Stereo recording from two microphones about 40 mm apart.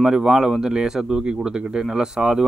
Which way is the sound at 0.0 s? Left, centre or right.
Centre.